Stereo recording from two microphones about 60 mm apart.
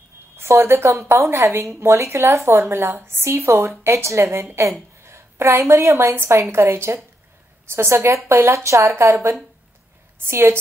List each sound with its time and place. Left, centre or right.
0.4 s a woman's voice: right
0.8 s a woman's voice: right